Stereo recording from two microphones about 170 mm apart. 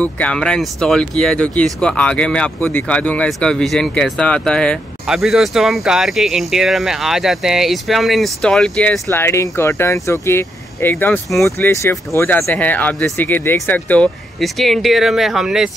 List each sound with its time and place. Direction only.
0.0 s speech: 5° left (ahead or behind)
9.1 s speech: 15° left (ahead or behind); by 15.7 s centre (ahead or behind)